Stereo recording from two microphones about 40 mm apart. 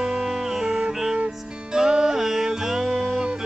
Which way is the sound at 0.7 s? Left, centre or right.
Right.